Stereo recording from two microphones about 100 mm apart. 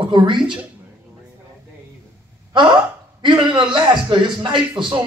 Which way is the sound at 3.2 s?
50° right (ahead or behind).